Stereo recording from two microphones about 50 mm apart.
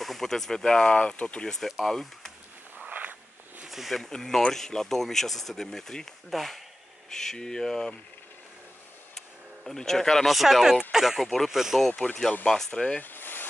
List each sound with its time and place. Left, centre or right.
0.0 s speech: centre
2.9 s a sound: right
3.6 s speech: centre
4.1 s speech: centre
9.7 s speech: centre
11.2 s speech: centre
11.5 s speech: centre
12.4 s speech: centre
13.0 s a sound: left